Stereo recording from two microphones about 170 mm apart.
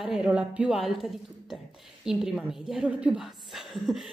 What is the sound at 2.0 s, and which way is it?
A woman's voice, 5° right (ahead or behind).